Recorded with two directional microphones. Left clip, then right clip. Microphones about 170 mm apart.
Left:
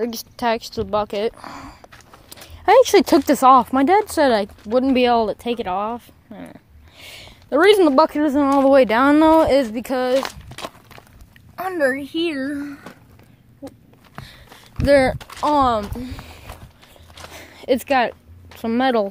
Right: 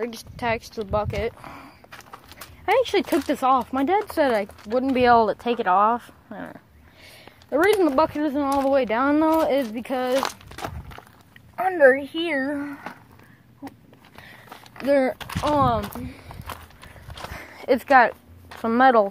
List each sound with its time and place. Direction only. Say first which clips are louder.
0.0 s speech: left 5 dB; 55° left (ahead or behind)
1.9 s a sound: right 3 dB; 40° right (ahead or behind)
2.6 s speech: left 8 dB; 65° left (ahead or behind); by 5.0 s 50° left (ahead or behind)
5.0 s a woman's voice: even; 30° left (ahead or behind)
7.0 s speech: left 7 dB; 55° left (ahead or behind)
11.5 s speech: right 4 dB; 20° left (ahead or behind)
14.9 s speech: left 6 dB; 55° left (ahead or behind)
15.1 s speech: right 3 dB; 25° right (ahead or behind)
15.4 s speech: left 4 dB; 45° left (ahead or behind)
17.4 s a sound: left 2 dB; 40° left (ahead or behind)
18.6 s speech: right 2 dB; 30° left (ahead or behind)